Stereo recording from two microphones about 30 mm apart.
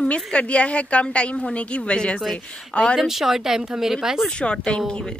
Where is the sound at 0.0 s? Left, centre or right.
Left.